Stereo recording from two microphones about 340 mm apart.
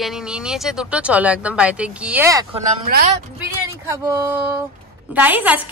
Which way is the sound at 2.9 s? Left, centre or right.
Right.